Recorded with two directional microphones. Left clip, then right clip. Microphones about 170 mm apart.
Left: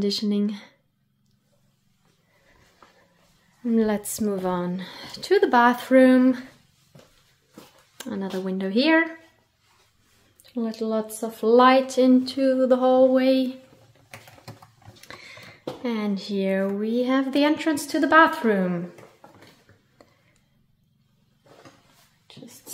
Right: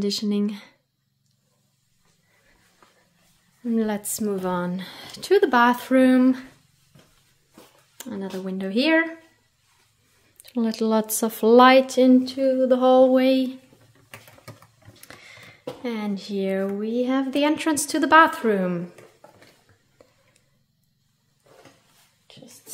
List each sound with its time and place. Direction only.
0.0 s a woman's voice: 5° right (ahead or behind)
2.8 s a sound: 10° left (ahead or behind)
3.7 s a woman's voice: 5° left (ahead or behind)
8.0 s speech: 10° left (ahead or behind)
10.4 s speech: 30° right (ahead or behind)
12.4 s speech: centre (ahead or behind)
12.7 s a woman's voice: 25° right (ahead or behind); by 13.6 s 10° right (ahead or behind)
15.0 s speech: 5° right (ahead or behind)
17.6 s a woman's voice: 20° right (ahead or behind)
20.0 s a sound: 10° right (ahead or behind)
22.3 s a sound: 5° right (ahead or behind)